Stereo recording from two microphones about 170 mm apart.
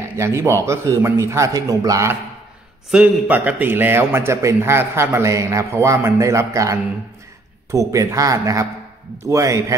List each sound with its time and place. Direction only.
0.1 s a man's voice: 15° right (ahead or behind)
2.9 s a man's voice: 5° right (ahead or behind)